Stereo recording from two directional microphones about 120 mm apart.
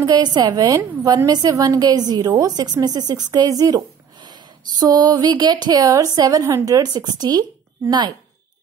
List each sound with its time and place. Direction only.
0.0 s a woman's voice: 35° right (ahead or behind)